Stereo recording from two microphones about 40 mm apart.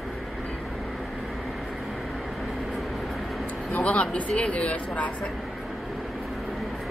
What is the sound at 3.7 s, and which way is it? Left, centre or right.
Speech, left.